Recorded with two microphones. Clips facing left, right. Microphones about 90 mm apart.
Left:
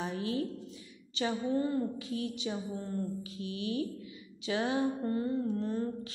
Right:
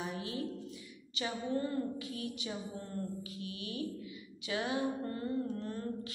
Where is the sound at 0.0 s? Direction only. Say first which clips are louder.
Left 5 dB; 30° left (ahead or behind).